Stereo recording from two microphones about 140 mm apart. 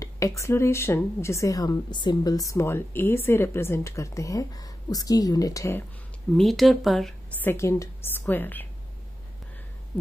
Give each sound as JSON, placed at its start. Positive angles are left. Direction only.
{"t": 0.0, "sound": "a woman's voice", "side_deg": 20}
{"t": 6.3, "sound": "speech", "side_deg": 0}
{"t": 7.3, "sound": "a woman's voice", "side_deg": 15}